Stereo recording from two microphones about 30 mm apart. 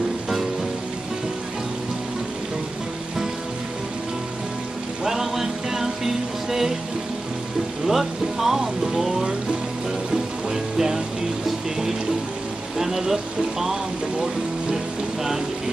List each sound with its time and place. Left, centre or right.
5.0 s music: centre
7.8 s speech: centre
10.1 s music: centre
12.7 s speech: centre